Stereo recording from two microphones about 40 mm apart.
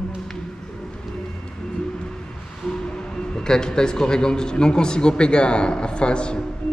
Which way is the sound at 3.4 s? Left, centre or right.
Centre.